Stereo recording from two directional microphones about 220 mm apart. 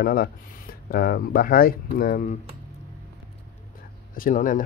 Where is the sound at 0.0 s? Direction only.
40° left (ahead or behind).